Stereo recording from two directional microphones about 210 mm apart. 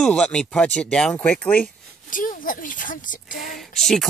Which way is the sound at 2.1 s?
40° left (ahead or behind).